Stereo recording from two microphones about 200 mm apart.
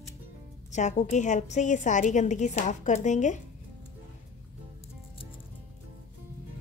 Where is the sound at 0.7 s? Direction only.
35° left (ahead or behind).